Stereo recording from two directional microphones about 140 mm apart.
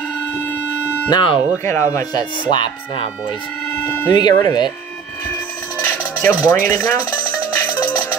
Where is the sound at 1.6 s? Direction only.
20° left (ahead or behind).